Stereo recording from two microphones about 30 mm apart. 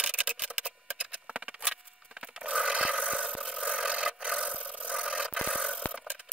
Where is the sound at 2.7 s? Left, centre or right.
Right.